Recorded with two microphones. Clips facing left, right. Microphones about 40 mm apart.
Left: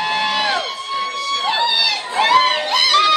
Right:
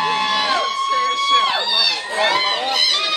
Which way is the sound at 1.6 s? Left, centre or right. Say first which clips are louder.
Left 2 dB; centre.